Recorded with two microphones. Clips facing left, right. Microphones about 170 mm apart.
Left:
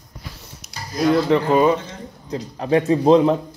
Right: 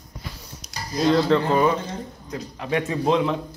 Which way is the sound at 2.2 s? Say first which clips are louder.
Left 7 dB; 35° left (ahead or behind).